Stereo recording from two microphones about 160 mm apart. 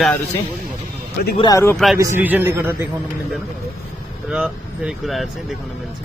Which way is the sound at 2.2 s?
10° right (ahead or behind).